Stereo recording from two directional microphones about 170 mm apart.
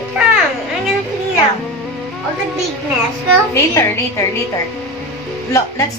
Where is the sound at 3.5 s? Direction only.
15° left (ahead or behind).